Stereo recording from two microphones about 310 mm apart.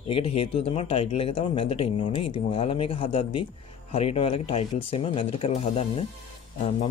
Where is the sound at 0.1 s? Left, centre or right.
Centre.